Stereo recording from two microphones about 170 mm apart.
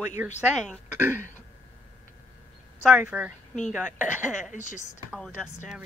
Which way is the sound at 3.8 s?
5° right (ahead or behind).